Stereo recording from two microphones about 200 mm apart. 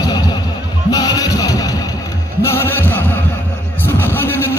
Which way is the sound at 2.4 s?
10° left (ahead or behind).